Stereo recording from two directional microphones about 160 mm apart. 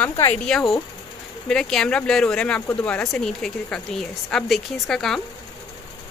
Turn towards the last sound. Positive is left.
turn(degrees=5)  # may be behind; listen again after turning